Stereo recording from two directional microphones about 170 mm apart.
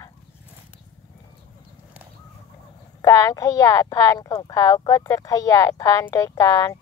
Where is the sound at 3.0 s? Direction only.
20° left (ahead or behind).